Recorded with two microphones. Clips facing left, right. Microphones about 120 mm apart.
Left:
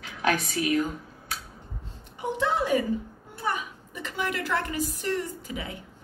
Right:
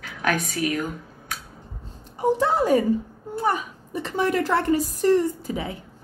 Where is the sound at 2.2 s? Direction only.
40° right (ahead or behind).